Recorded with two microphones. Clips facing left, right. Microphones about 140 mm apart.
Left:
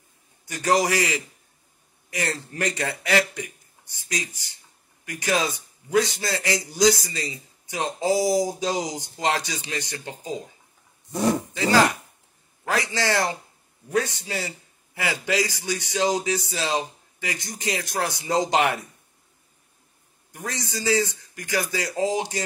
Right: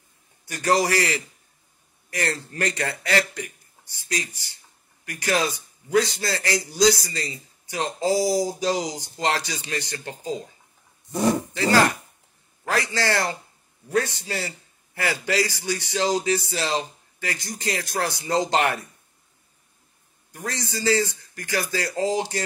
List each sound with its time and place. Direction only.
0.5 s a man's voice: 15° left (ahead or behind)
11.5 s a man's voice: 15° left (ahead or behind)
20.3 s a man's voice: 15° left (ahead or behind)